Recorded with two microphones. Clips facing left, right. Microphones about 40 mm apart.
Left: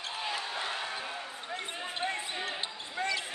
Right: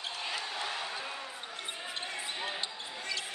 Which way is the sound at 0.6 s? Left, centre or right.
Centre.